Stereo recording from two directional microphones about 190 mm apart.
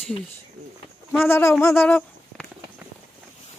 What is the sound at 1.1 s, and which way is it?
Speech, 10° left (ahead or behind).